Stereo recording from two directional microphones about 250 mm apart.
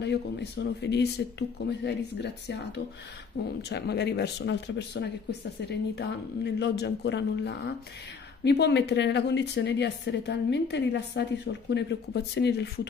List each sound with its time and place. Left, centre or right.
0.0 s a woman's voice: left